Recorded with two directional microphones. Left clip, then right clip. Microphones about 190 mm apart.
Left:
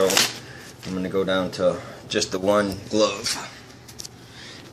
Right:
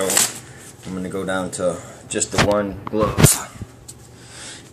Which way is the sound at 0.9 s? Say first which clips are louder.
Left 1 dB; 5° right (ahead or behind).